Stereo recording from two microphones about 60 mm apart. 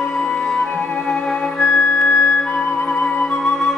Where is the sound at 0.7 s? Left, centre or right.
Left.